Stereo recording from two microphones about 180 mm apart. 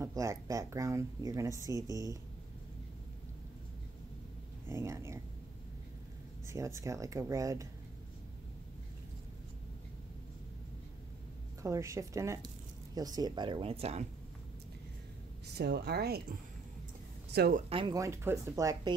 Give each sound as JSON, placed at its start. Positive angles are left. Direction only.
{"t": 0.0, "sound": "speech", "side_deg": -15}
{"t": 4.6, "sound": "speech", "side_deg": -15}
{"t": 6.4, "sound": "speech", "side_deg": -15}
{"t": 11.6, "sound": "speech", "side_deg": -15}
{"t": 15.4, "sound": "speech", "side_deg": -65}
{"t": 17.6, "sound": "speech", "side_deg": -25}